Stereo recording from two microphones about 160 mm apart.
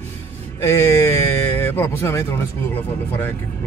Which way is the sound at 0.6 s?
15° left (ahead or behind).